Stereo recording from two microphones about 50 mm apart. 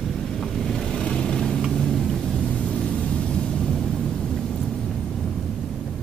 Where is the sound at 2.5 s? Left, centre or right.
Left.